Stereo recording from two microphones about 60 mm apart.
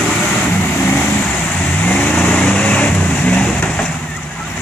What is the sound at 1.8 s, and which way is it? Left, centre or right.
Vehicle, left.